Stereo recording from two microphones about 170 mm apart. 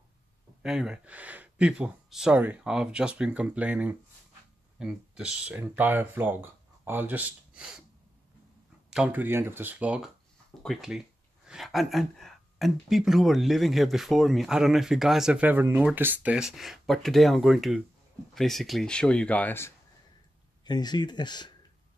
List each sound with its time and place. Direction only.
0.6 s speech: 5° right (ahead or behind)
8.9 s speech: 10° right (ahead or behind); by 19.7 s 10° left (ahead or behind)
20.6 s speech: 25° left (ahead or behind)